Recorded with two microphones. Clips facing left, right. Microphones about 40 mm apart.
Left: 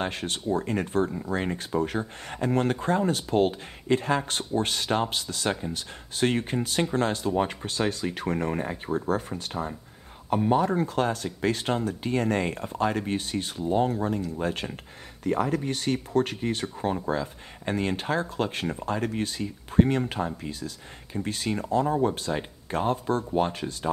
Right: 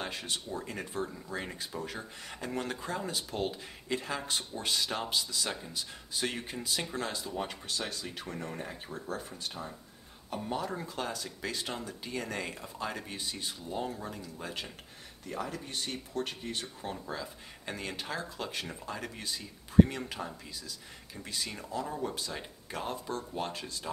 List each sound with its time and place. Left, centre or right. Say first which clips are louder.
0.0 s speech: left 7 dB; left
1.1 s speech: left 10 dB; left
1.6 s speech: left 11 dB; left
10.3 s speech: left 12 dB; left